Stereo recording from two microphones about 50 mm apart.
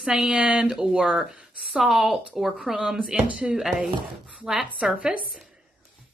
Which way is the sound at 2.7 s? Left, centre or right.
Centre.